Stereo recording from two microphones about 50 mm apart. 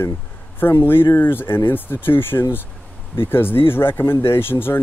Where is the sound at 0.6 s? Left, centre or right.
Left.